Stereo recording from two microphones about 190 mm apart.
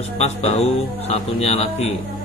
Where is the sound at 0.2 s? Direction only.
35° left (ahead or behind).